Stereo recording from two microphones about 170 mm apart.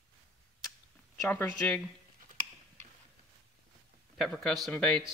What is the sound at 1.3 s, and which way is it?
Speech, 10° left (ahead or behind).